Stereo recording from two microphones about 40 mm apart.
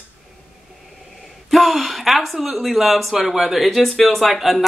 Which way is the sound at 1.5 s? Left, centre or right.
Centre.